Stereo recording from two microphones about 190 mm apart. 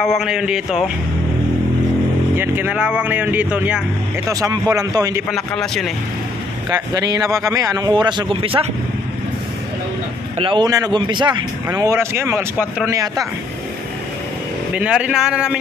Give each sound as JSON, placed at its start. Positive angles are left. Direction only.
{"t": 0.0, "sound": "speech", "side_deg": 0}
{"t": 2.3, "sound": "speech", "side_deg": -10}
{"t": 4.3, "sound": "speech", "side_deg": -20}
{"t": 5.3, "sound": "speech", "side_deg": 0}
{"t": 6.7, "sound": "a man's voice", "side_deg": -20}
{"t": 10.4, "sound": "a man's voice", "side_deg": -25}
{"t": 14.7, "sound": "speech", "side_deg": -5}